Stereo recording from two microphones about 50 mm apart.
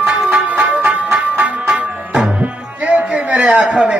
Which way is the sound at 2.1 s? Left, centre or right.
Centre.